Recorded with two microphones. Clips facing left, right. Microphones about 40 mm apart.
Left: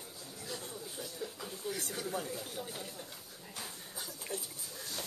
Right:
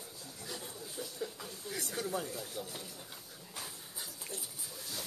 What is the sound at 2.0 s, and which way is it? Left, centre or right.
Speech, centre.